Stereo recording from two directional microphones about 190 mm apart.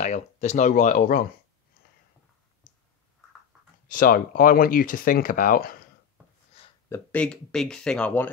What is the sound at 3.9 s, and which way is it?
Speech, 45° left (ahead or behind).